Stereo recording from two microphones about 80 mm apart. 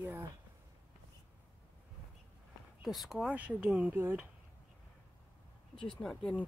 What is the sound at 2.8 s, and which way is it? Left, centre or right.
Speech, centre.